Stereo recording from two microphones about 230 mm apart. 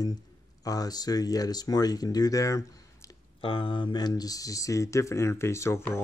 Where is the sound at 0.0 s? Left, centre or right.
Centre.